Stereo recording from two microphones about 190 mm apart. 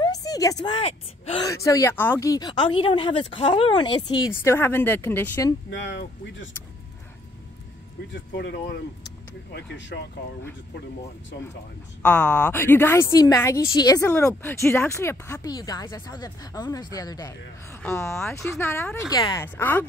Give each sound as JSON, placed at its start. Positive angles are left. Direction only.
{"t": 0.0, "sound": "a woman's voice", "side_deg": 20}
{"t": 1.5, "sound": "speech", "side_deg": 15}
{"t": 4.3, "sound": "a woman's voice", "side_deg": 10}
{"t": 5.7, "sound": "speech", "side_deg": 70}
{"t": 8.1, "sound": "speech", "side_deg": 65}
{"t": 12.0, "sound": "a woman's voice", "side_deg": 5}